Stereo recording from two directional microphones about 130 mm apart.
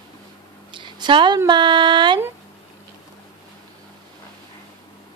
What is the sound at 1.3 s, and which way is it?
Speech, 35° right (ahead or behind).